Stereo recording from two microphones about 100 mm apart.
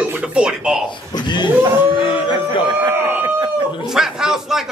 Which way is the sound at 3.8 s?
5° right (ahead or behind).